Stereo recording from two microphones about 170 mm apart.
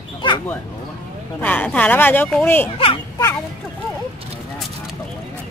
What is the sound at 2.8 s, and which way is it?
Speech, 35° left (ahead or behind).